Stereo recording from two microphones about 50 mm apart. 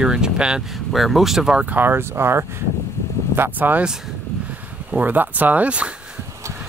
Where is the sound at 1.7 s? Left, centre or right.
Right.